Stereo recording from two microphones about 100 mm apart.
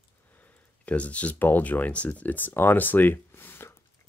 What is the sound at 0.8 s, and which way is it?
Speech, 15° left (ahead or behind).